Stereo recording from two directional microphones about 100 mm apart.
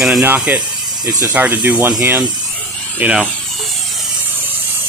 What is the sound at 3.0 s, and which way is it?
Speech, 10° right (ahead or behind).